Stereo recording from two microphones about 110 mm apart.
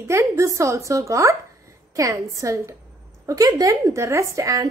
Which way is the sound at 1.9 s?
30° right (ahead or behind).